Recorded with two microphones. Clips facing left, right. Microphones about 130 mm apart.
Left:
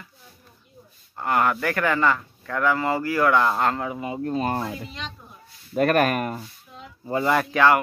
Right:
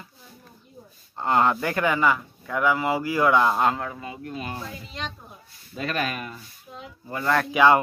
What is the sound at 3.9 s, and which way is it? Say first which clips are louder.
Speech: left 7 dB; 20° left (ahead or behind).